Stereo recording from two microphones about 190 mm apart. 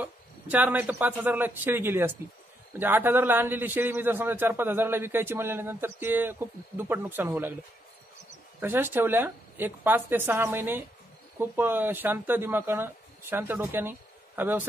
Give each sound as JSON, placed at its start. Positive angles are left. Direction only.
{"t": 0.0, "sound": "a man's voice", "side_deg": -10}
{"t": 8.5, "sound": "a man's voice", "side_deg": -10}